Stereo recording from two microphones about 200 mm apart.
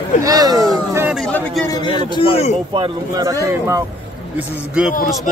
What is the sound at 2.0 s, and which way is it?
Speech, 25° left (ahead or behind).